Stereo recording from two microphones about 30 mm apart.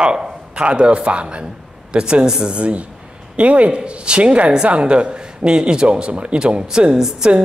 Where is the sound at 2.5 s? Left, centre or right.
Right.